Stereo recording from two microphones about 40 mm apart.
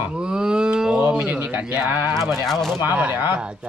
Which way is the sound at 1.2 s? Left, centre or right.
Right.